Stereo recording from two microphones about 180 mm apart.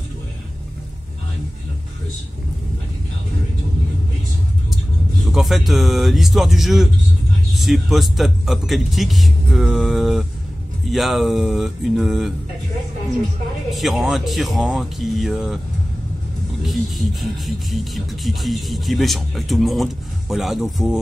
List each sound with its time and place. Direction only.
5.2 s speech: centre (ahead or behind)
13.7 s speech: centre (ahead or behind)
16.6 s speech: centre (ahead or behind)